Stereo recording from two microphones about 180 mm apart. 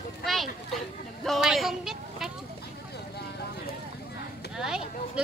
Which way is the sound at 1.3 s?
Centre (ahead or behind).